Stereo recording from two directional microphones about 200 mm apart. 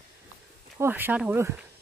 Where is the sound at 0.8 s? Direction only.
10° right (ahead or behind).